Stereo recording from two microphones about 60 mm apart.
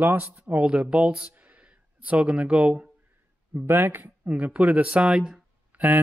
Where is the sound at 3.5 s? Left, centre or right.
Right.